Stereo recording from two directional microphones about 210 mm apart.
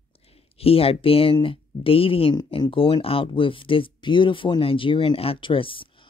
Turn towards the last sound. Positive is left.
turn(degrees=25)  # may be behind; listen again after turning